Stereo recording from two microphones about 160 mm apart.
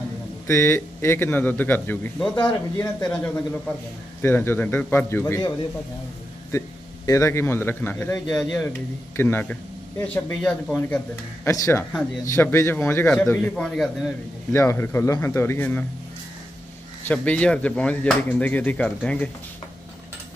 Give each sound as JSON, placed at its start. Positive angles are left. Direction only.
{"t": 0.5, "sound": "speech", "side_deg": 15}
{"t": 7.1, "sound": "a man's voice", "side_deg": 20}
{"t": 11.4, "sound": "speech", "side_deg": 20}
{"t": 14.5, "sound": "speech", "side_deg": 15}
{"t": 17.1, "sound": "speech", "side_deg": 10}